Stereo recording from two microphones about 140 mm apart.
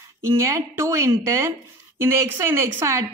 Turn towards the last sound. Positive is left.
turn(degrees=-20)  # may be behind; listen again after turning